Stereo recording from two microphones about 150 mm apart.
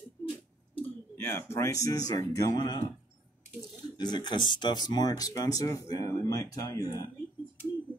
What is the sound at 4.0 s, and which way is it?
Speech, 30° left (ahead or behind).